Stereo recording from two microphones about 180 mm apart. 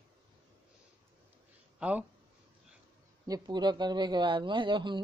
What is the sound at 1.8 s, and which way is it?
Speech, 5° right (ahead or behind).